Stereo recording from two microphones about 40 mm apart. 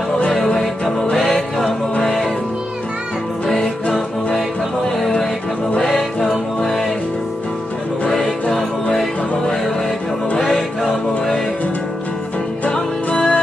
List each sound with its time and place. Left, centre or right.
0.5 s music: centre
3.4 s music: centre
5.8 s music: centre
8.1 s music: centre
10.4 s music: centre
12.7 s music: left